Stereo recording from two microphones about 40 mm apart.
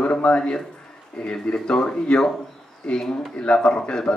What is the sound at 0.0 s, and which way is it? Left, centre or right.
A man's voice, left.